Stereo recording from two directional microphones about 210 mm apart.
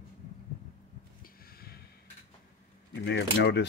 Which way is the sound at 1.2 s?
45° left (ahead or behind).